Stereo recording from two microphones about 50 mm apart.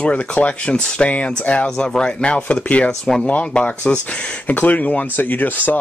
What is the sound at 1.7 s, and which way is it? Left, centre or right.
Speech, centre.